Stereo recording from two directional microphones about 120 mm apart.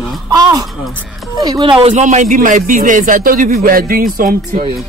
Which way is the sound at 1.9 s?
85° right.